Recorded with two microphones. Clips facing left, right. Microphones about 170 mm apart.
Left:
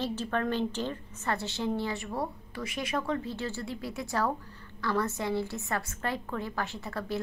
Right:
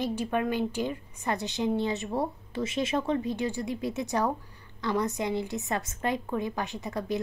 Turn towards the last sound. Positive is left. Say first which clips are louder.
# right 3 dB
turn(degrees=-20)  # may be behind; listen again after turning